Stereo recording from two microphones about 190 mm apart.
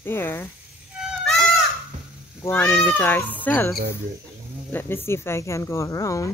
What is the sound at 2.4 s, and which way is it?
Speech, 10° left (ahead or behind).